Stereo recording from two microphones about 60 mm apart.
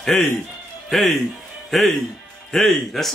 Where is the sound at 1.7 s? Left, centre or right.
Centre.